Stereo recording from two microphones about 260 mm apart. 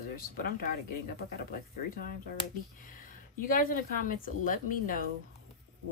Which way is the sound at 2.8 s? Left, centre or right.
Left.